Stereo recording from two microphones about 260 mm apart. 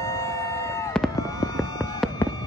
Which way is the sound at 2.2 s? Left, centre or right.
Centre.